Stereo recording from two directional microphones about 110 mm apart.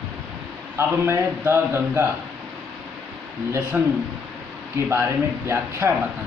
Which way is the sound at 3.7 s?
15° right (ahead or behind).